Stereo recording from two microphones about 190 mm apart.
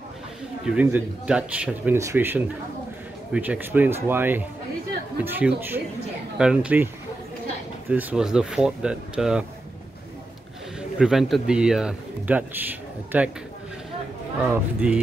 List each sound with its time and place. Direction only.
0.7 s a man's voice: 5° right (ahead or behind)
7.9 s a man's voice: 10° right (ahead or behind)
11.0 s a man's voice: centre (ahead or behind)
14.5 s a man's voice: 5° right (ahead or behind)